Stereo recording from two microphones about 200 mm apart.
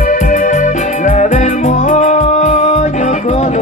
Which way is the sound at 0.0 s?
40° left (ahead or behind).